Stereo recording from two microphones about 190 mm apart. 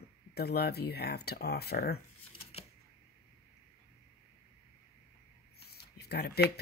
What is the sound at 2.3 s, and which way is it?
Shuffling cards, 30° left (ahead or behind).